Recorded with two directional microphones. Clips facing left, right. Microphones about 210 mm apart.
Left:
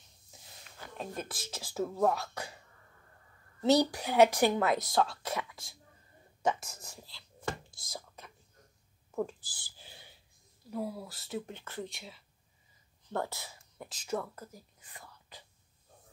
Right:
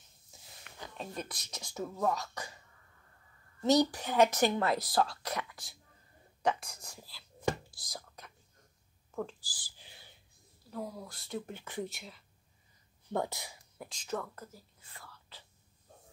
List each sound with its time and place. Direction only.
0.9 s speech: 5° left (ahead or behind)
3.7 s speech: 10° left (ahead or behind)
7.8 s whispering: centre (ahead or behind)
9.4 s speech: 25° left (ahead or behind)
10.7 s speech: 10° left (ahead or behind)
11.5 s speech: 15° right (ahead or behind)
11.9 s speech: centre (ahead or behind)
13.1 s speech: 15° right (ahead or behind)
13.7 s speech: 5° left (ahead or behind)